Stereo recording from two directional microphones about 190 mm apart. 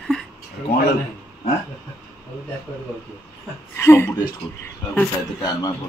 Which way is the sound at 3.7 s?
15° left (ahead or behind).